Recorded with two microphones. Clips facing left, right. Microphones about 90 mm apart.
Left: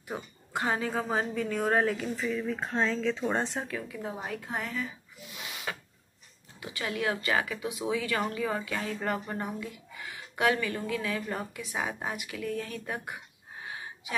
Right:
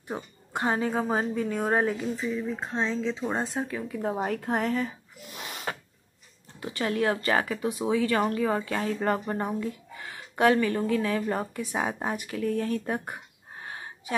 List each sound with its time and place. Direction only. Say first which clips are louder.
0.1 s a woman's voice: right 2 dB; 25° right (ahead or behind)
2.6 s speech: left 1 dB; centre (ahead or behind)
3.9 s speech: right 7 dB; 40° right (ahead or behind)